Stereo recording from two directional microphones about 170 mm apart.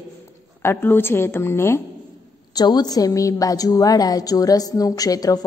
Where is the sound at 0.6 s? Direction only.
15° left (ahead or behind).